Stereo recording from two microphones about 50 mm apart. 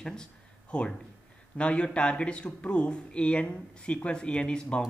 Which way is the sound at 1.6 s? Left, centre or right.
Left.